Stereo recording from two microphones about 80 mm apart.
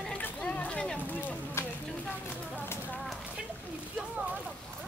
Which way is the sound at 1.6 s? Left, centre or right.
Left.